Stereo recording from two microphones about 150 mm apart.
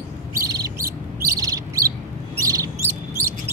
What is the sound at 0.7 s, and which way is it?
Bird, 20° right (ahead or behind).